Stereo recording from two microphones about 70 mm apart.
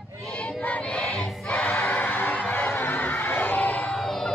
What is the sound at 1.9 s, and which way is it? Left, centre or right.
Music, left.